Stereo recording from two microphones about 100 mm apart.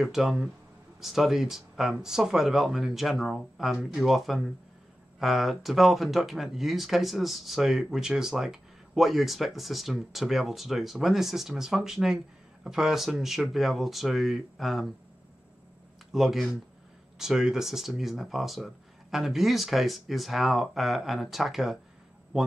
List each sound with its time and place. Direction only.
0.0 s speech: centre (ahead or behind)
16.1 s speech: centre (ahead or behind)